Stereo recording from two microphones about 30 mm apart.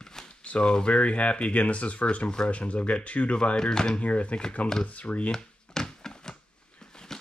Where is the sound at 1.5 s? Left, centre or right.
Left.